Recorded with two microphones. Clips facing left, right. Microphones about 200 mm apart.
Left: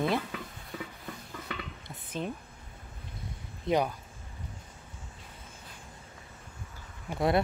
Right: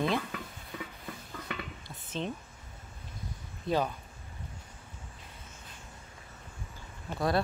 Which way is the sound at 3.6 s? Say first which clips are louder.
Left 2 dB; 15° left (ahead or behind).